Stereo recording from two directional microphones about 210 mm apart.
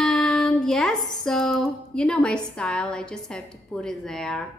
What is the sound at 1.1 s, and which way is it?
A woman's voice, centre (ahead or behind).